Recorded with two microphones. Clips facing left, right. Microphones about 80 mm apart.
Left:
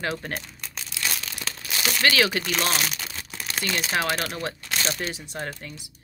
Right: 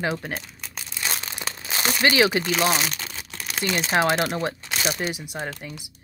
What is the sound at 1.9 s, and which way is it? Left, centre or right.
Speech, right.